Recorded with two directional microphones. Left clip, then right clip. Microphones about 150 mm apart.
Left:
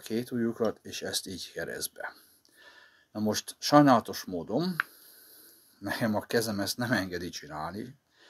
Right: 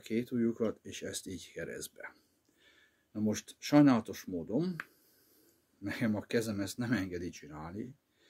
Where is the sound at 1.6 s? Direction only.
20° right (ahead or behind).